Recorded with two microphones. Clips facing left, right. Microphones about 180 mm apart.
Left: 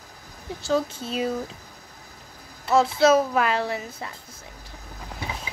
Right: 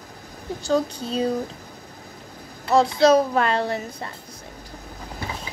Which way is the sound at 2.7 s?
5° left (ahead or behind).